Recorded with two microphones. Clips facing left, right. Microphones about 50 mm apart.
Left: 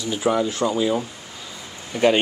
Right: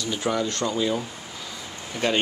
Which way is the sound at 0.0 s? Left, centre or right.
Centre.